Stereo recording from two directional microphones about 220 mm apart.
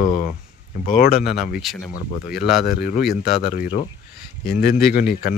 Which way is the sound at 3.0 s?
Centre (ahead or behind).